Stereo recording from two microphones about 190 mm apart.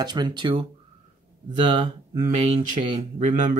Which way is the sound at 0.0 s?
20° right (ahead or behind).